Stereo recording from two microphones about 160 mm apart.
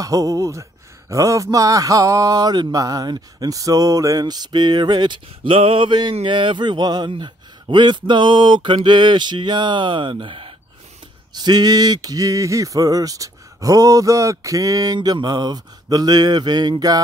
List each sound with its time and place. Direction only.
0.0 s speech: 20° right (ahead or behind)